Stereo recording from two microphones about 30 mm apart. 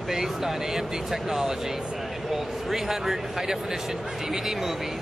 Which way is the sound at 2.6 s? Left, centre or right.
Centre.